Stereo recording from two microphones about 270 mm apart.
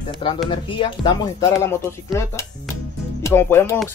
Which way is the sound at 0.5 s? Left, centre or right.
Centre.